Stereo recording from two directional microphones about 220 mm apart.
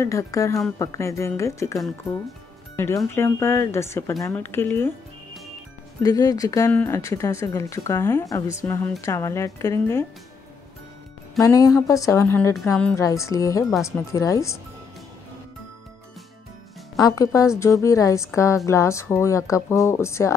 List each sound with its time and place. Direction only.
0.0 s speech: 15° left (ahead or behind)
6.0 s speech: 15° left (ahead or behind)
11.3 s speech: 15° left (ahead or behind)
17.0 s speech: 15° left (ahead or behind)